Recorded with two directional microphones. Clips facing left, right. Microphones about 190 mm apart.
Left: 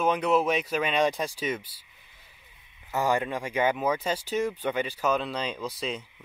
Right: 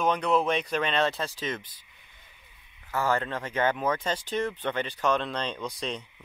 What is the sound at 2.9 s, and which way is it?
Speech, 15° left (ahead or behind).